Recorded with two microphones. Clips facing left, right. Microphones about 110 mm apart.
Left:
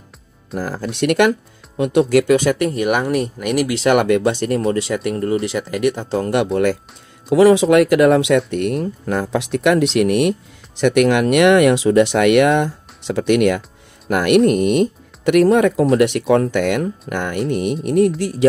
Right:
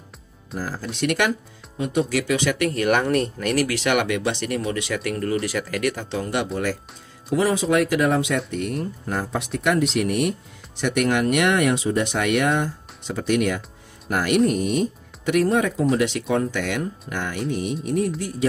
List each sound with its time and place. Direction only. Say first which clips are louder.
0.6 s speech: left 5 dB; 60° left (ahead or behind)
1.8 s speech: left 8 dB; 65° left (ahead or behind); by 2.5 s 50° left (ahead or behind)
2.6 s speech: left 4 dB; 20° left (ahead or behind)
2.9 s speech: left 2 dB; 10° left (ahead or behind)
3.7 s speech: left 7 dB; 35° left (ahead or behind)
6.2 s speech: left 8 dB; 55° left (ahead or behind)
7.2 s speech: left 10 dB; 80° left
7.7 s speech: left 8 dB; 70° left (ahead or behind)
10.8 s speech: left 7 dB; 90° left; by 15.9 s 75° left (ahead or behind)
16.0 s speech: left 7 dB; 60° left (ahead or behind)